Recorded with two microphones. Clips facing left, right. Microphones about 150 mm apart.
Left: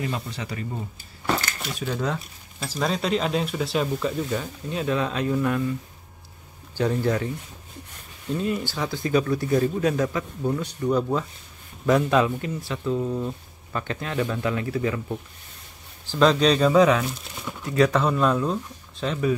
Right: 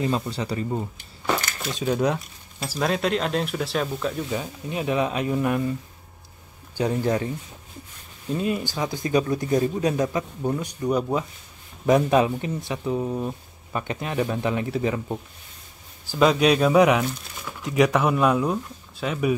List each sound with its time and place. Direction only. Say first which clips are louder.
0.0 s speech: right 5 dB; 30° right (ahead or behind)
1.8 s speech: right 5 dB; 15° right (ahead or behind)
2.7 s speech: right 1 dB; centre (ahead or behind)
4.4 s speech: even; 15° right (ahead or behind)
6.8 s speech: even; 15° right (ahead or behind)
8.4 s speech: right 1 dB; 15° right (ahead or behind)
16.1 s speech: even; 10° right (ahead or behind)